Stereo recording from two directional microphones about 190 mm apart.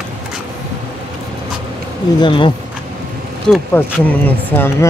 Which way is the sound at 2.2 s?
25° left (ahead or behind).